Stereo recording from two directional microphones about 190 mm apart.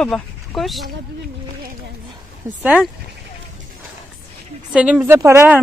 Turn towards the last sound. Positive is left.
turn(degrees=-15)  # may be behind; listen again after turning